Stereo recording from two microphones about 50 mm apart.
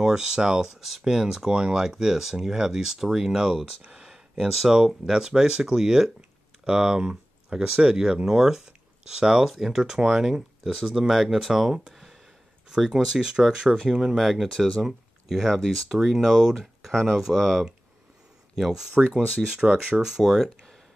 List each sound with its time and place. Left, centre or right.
0.0 s speech: centre
3.8 s a sound: centre
4.6 s speech: centre
11.9 s a sound: centre
12.6 s speech: centre
14.1 s speech: centre
18.6 s speech: centre